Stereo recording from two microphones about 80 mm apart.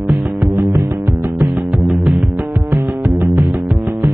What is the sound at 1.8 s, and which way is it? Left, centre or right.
Music, centre.